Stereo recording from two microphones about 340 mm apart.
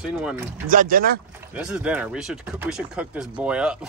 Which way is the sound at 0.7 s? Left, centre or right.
Right.